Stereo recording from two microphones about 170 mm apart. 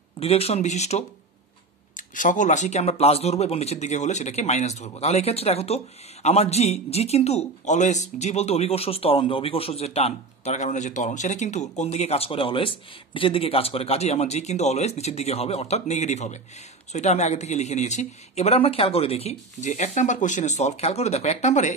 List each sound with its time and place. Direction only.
0.2 s a man's voice: 35° left (ahead or behind)